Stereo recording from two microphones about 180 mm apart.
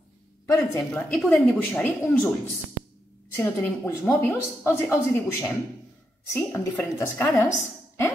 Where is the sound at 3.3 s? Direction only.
10° left (ahead or behind).